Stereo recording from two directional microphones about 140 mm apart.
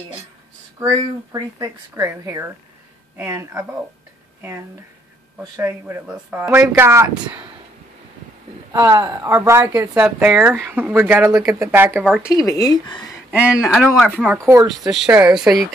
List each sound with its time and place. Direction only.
0.7 s speech: 25° right (ahead or behind)
8.8 s speech: 20° right (ahead or behind)
9.9 s speech: 10° right (ahead or behind)
12.4 s speech: 25° left (ahead or behind)
13.3 s speech: 10° right (ahead or behind)
13.9 s speech: 5° left (ahead or behind)
14.3 s speech: 20° right (ahead or behind)
14.7 s speech: centre (ahead or behind)